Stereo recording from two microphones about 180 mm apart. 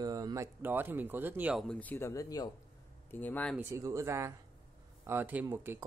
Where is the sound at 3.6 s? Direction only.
15° right (ahead or behind).